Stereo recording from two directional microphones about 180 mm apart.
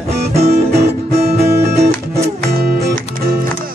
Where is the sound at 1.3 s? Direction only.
65° right (ahead or behind).